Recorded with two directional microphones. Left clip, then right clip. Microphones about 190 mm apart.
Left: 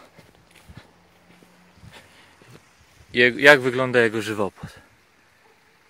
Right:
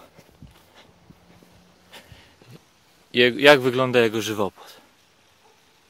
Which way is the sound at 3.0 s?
10° right (ahead or behind).